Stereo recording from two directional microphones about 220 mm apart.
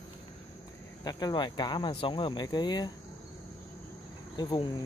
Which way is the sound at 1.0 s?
20° left (ahead or behind).